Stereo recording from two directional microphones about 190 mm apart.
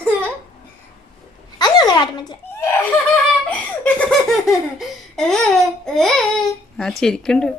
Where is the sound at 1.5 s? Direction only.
20° left (ahead or behind).